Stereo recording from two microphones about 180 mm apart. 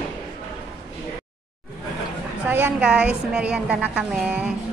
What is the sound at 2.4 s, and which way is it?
A woman's voice, 10° right (ahead or behind).